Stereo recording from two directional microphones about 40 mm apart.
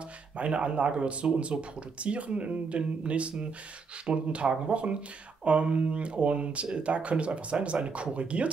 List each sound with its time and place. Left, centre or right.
0.4 s speech: right